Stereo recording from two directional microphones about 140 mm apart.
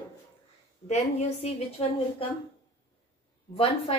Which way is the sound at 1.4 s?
45° left (ahead or behind).